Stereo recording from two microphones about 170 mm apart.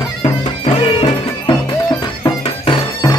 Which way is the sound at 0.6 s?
35° left (ahead or behind).